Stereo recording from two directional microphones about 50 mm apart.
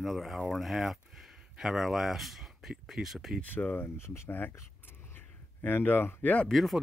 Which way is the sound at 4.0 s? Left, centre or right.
Left.